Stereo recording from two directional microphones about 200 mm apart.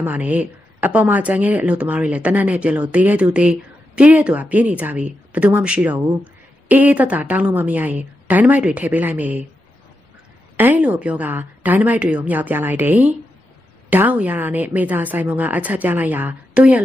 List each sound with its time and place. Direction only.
0.0 s a woman's voice: 10° right (ahead or behind)
10.5 s a woman's voice: 10° right (ahead or behind)